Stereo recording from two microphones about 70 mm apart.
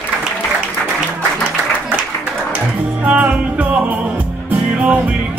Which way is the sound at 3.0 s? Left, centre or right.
Right.